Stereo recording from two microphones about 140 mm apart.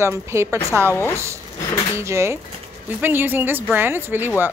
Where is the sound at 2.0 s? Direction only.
20° right (ahead or behind).